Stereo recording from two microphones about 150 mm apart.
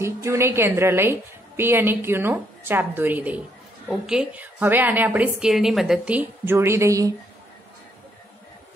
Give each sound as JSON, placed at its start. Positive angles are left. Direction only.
{"t": 0.0, "sound": "a woman's voice", "side_deg": -20}